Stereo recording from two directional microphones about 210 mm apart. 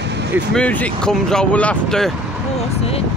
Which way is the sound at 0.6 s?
5° left (ahead or behind).